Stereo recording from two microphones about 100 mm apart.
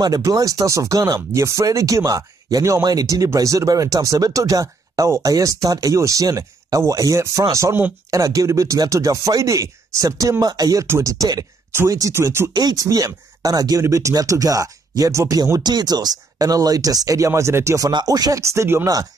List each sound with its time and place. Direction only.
0.0 s speech: 40° right (ahead or behind)
12.5 s speech: 40° right (ahead or behind)
17.8 s speech: 40° right (ahead or behind)